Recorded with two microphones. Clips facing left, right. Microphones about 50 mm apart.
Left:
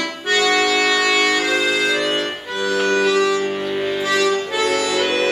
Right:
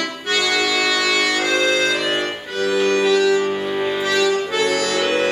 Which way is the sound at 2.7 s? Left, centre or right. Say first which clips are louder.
Even; left.